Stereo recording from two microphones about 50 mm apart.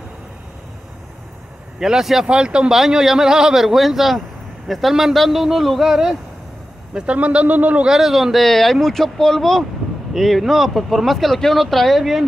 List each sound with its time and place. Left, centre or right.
1.8 s a man's voice: centre
2.2 s a man's voice: centre
7.2 s speech: right
7.8 s a man's voice: centre